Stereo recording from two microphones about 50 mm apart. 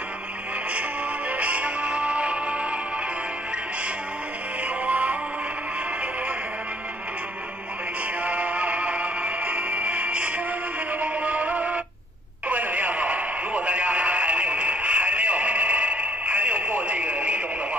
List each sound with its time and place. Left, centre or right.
1.3 s music: right
4.8 s music: right
8.2 s music: right
12.4 s radio: right